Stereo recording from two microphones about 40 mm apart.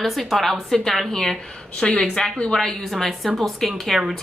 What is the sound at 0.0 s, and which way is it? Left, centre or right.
Speech, centre.